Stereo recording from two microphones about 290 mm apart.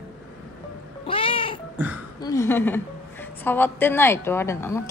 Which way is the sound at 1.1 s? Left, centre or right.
Centre.